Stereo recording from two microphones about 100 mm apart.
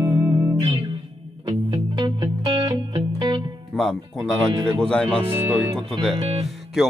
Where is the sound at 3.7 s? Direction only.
Centre (ahead or behind).